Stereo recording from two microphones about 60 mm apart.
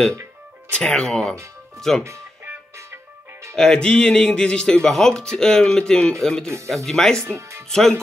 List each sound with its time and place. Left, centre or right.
0.7 s speech: centre
3.5 s speech: centre
7.3 s music: right
7.7 s speech: centre